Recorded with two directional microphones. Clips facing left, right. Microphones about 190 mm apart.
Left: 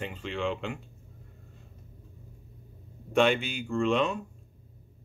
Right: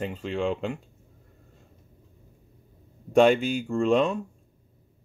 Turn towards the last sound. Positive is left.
turn(degrees=-40)  # may be behind; listen again after turning